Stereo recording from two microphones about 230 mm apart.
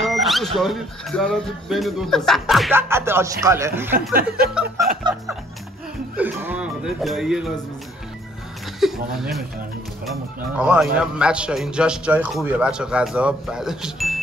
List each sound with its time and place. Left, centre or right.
0.0 s a sound: centre
0.6 s speech: centre
4.1 s speech: right
6.1 s speech: centre
8.7 s speech: centre
10.6 s speech: centre